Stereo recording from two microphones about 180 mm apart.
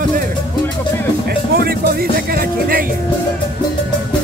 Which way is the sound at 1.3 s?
60° right (ahead or behind).